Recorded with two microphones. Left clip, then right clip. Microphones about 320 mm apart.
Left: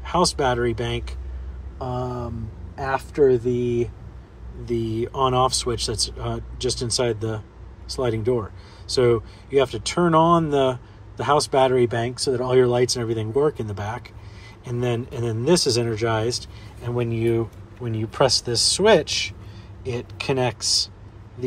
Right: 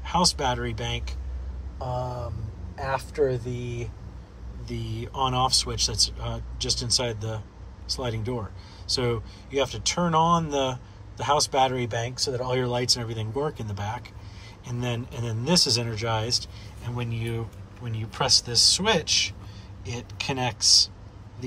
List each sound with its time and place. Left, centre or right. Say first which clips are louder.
0.0 s a man's voice: left 3 dB; centre
3.6 s a man's voice: left 13 dB; centre